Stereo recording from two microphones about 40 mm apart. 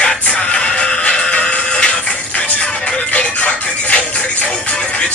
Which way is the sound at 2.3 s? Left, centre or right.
Left.